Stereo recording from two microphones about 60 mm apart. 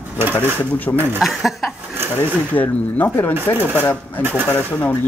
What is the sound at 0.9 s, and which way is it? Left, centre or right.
Speech, left.